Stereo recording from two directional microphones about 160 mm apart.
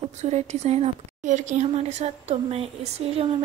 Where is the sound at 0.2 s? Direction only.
45° right (ahead or behind).